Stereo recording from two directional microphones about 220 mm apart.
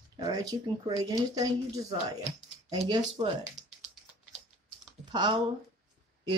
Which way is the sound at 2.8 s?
25° right (ahead or behind).